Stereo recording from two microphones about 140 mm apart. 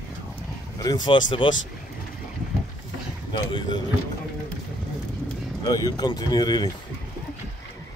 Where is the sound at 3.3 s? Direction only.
35° left (ahead or behind).